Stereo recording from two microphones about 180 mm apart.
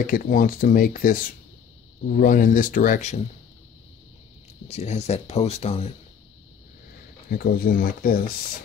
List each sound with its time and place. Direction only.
0.0 s speech: 50° left (ahead or behind)
4.6 s speech: 35° left (ahead or behind)
7.2 s speech: 55° left (ahead or behind)